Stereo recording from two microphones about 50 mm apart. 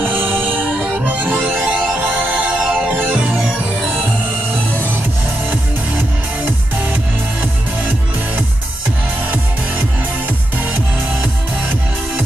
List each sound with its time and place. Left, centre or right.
0.0 s music: right
3.4 s music: centre